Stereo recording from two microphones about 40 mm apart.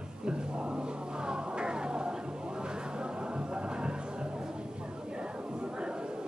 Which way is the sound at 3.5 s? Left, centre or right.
Right.